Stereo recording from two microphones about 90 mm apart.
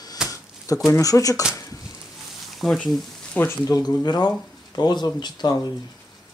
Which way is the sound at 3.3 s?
25° left (ahead or behind).